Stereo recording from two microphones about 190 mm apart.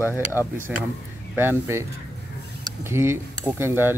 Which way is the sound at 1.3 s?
10° right (ahead or behind).